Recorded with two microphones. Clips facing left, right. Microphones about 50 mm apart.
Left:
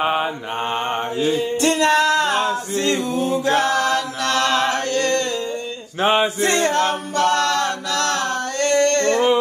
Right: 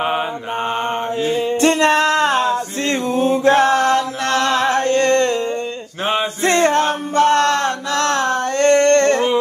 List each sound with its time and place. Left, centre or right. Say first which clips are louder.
0.0 s mantra: even; centre
1.3 s music: right 5 dB; right
2.8 s mantra: right 2 dB; right
6.0 s a sound: left 2 dB; centre
6.4 s male singing: right 3 dB; right